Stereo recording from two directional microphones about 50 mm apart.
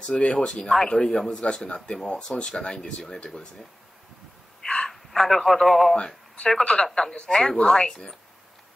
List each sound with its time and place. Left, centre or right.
0.0 s speech: centre
0.5 s speech: centre
4.8 s a man's voice: centre
5.9 s speech: centre